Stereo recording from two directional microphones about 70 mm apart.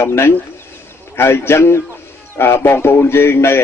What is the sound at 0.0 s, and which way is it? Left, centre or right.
Speech, left.